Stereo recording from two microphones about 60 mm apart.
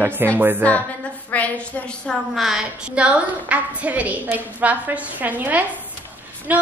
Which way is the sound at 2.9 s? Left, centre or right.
Right.